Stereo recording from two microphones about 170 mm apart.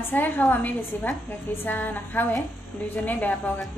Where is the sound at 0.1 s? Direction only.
10° left (ahead or behind).